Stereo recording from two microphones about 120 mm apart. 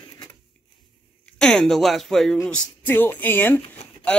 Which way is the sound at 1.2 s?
5° left (ahead or behind).